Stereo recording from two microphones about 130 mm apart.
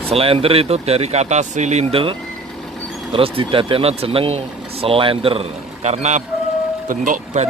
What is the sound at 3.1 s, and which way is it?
Speech, 45° right (ahead or behind).